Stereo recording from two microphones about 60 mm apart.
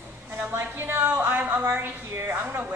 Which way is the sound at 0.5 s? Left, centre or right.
Right.